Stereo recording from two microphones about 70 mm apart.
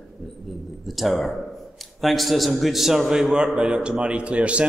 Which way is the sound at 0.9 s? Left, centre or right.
Centre.